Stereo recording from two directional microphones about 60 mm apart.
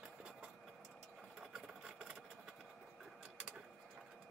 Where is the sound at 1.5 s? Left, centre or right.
Centre.